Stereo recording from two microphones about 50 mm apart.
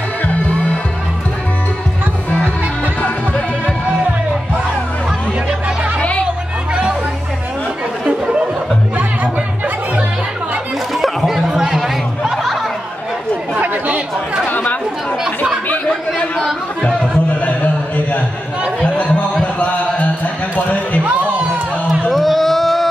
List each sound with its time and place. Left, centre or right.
3.0 s music: left
5.9 s chatter: left
8.0 s chatter: centre
11.2 s chatter: centre
13.6 s chatter: right
14.5 s chatter: left
18.8 s a sound: left
22.1 s a sound: centre